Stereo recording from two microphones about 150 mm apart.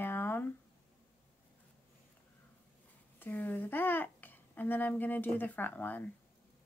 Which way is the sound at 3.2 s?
10° left (ahead or behind).